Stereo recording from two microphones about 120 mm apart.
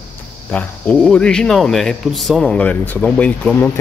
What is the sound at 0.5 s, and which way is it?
Speech, 10° left (ahead or behind).